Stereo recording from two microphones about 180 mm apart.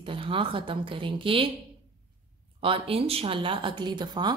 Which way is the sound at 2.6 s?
30° right (ahead or behind).